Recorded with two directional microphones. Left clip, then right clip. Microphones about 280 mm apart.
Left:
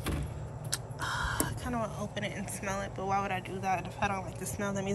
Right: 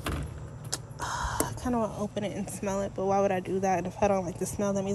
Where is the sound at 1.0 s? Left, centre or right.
Centre.